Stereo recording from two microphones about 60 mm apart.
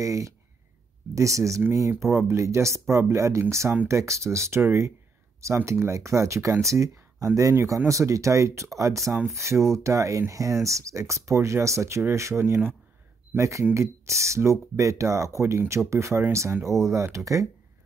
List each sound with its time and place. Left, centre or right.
0.0 s speech: right